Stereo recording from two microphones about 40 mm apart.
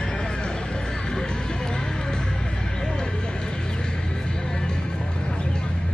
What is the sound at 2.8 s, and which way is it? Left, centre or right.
Vehicle, centre.